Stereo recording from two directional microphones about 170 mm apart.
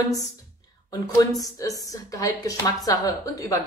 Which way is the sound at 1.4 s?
20° left (ahead or behind).